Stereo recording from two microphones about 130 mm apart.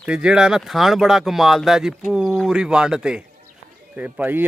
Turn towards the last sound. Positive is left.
turn(degrees=-15)  # may be behind; listen again after turning